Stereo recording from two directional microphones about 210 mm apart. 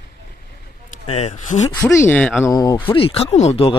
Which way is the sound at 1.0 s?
30° left (ahead or behind).